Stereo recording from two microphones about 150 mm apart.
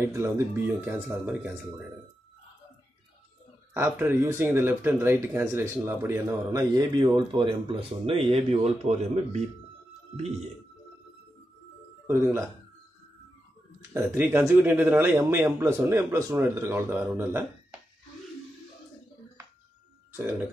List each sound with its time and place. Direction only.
0.1 s speech: 20° right (ahead or behind)
3.7 s speech: 15° right (ahead or behind); by 9.4 s 45° right (ahead or behind)
12.1 s speech: 15° right (ahead or behind)
13.7 s speech: 15° right (ahead or behind)